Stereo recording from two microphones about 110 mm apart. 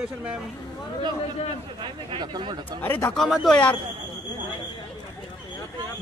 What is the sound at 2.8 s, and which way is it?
Speech, 15° left (ahead or behind).